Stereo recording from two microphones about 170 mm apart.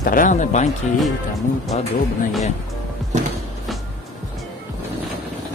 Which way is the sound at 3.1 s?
45° right (ahead or behind).